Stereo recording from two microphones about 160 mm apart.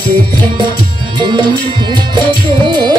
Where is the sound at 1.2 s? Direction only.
30° right (ahead or behind).